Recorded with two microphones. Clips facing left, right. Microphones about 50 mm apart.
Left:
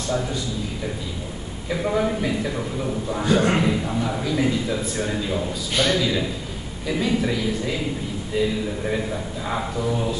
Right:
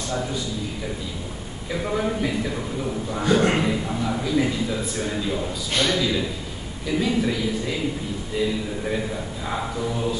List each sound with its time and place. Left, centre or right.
1.7 s a man's voice: centre